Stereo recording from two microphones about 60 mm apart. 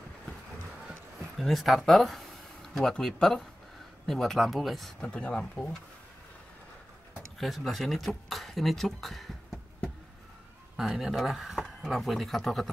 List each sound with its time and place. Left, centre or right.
1.4 s speech: centre
5.0 s speech: centre
7.3 s speech: centre
10.8 s speech: centre